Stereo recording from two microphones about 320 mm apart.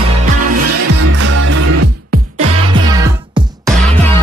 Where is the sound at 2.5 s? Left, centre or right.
Centre.